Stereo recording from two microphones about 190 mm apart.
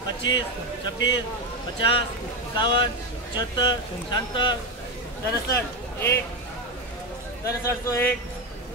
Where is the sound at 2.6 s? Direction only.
25° left (ahead or behind).